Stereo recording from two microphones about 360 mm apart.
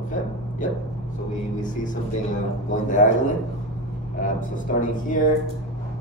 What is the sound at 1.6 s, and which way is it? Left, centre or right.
A man's voice, left.